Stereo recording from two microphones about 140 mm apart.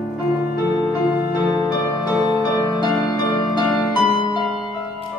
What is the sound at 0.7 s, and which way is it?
Music, 30° left (ahead or behind).